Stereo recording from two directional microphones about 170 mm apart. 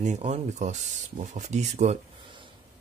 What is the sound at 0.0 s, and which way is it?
Speech, 40° right (ahead or behind).